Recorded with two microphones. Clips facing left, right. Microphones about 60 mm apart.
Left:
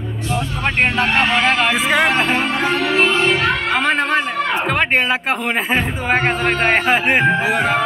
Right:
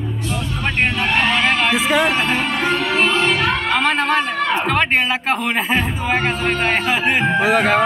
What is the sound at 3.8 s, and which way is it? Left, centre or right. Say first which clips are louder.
Speech: left 1 dB; left.